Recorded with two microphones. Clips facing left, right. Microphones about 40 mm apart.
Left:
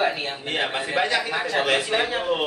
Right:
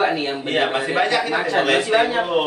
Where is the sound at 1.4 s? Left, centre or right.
Right.